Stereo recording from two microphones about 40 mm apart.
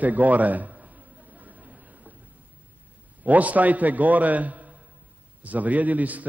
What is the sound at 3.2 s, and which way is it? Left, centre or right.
A man's voice, right.